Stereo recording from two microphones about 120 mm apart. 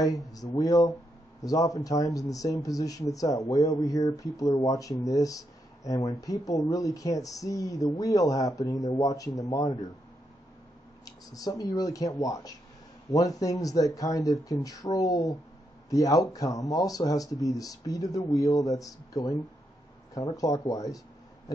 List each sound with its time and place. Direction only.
0.0 s speech: 30° left (ahead or behind)
11.1 s speech: 30° left (ahead or behind)